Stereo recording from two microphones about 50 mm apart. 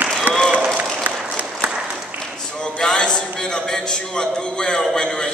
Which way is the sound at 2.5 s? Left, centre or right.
Centre.